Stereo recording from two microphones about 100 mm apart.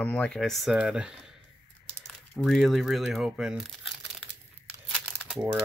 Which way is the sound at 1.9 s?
5° left (ahead or behind).